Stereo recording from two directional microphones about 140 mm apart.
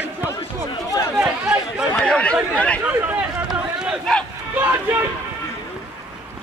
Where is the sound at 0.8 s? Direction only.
25° left (ahead or behind).